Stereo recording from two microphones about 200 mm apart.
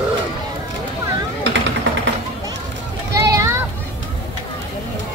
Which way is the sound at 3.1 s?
15° right (ahead or behind).